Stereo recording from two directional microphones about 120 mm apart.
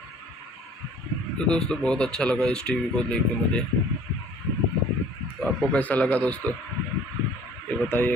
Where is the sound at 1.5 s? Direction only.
5° left (ahead or behind).